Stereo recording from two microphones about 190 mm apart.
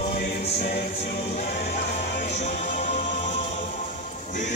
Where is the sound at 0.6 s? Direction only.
50° left (ahead or behind).